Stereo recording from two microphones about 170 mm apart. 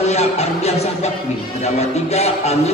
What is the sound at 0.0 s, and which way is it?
A man's voice, 40° left (ahead or behind).